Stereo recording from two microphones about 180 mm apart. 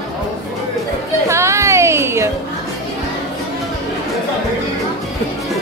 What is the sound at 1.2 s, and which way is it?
Music, 15° right (ahead or behind).